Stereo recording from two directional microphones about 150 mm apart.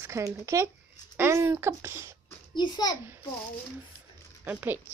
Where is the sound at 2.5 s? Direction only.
30° left (ahead or behind).